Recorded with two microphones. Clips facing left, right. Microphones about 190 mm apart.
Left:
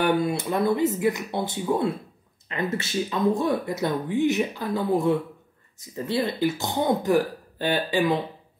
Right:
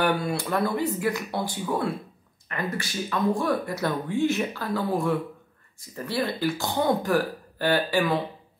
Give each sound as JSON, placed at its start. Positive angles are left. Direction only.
{"t": 0.0, "sound": "speech", "side_deg": 20}